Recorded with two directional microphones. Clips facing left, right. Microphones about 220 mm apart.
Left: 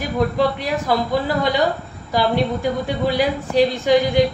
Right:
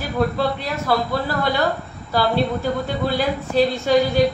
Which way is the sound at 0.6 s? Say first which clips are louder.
Left 1 dB; 15° left (ahead or behind).